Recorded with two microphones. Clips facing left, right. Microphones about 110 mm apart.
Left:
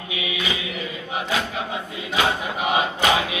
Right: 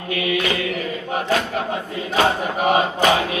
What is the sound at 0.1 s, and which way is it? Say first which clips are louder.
Mantra: right 7 dB; 55° right (ahead or behind).